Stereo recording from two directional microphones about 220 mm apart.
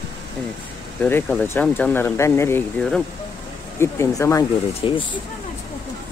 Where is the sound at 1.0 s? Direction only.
10° left (ahead or behind).